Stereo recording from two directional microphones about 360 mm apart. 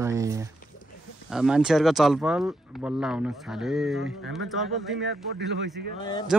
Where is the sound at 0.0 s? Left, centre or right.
Centre.